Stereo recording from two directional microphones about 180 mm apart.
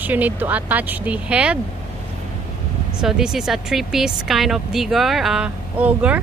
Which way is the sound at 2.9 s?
5° right (ahead or behind).